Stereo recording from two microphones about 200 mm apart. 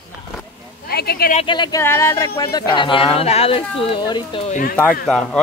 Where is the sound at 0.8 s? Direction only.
50° left (ahead or behind).